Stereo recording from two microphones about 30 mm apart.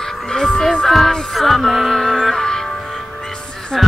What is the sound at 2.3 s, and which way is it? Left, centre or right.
Music, centre.